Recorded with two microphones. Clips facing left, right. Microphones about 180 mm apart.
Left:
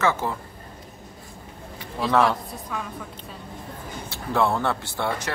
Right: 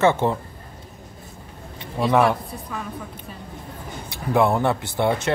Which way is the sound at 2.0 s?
15° right (ahead or behind).